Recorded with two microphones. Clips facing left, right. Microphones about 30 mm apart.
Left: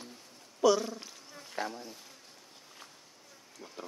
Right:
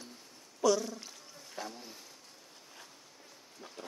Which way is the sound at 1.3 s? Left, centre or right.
Left.